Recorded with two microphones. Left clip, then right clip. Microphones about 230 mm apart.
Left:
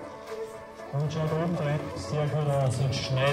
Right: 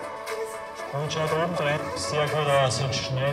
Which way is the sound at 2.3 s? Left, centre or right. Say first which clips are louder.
Right 8 dB; centre.